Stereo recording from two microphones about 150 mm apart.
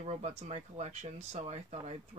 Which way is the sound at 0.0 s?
45° right (ahead or behind).